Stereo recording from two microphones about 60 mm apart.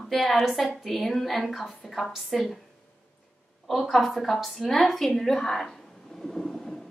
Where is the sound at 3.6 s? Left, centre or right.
Centre.